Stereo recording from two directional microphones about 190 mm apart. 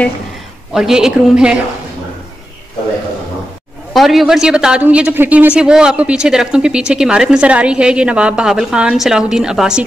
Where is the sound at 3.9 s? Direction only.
Centre (ahead or behind).